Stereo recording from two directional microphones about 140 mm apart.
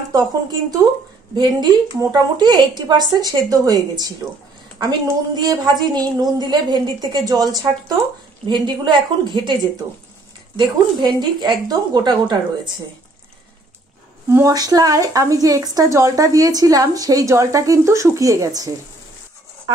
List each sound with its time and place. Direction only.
0.1 s a woman's voice: 25° right (ahead or behind)
10.6 s a woman's voice: 30° right (ahead or behind)
14.3 s a woman's voice: 25° right (ahead or behind)